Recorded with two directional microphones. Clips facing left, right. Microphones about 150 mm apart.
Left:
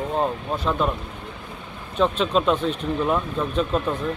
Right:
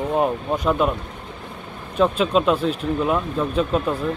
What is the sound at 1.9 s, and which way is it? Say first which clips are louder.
Speech: right 2 dB; 5° right (ahead or behind).